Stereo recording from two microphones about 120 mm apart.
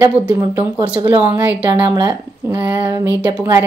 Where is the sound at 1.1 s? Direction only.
15° right (ahead or behind).